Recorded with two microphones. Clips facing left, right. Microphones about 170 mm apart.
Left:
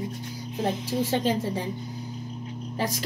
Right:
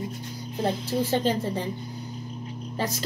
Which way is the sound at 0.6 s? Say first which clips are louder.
Right 1 dB; 15° left (ahead or behind).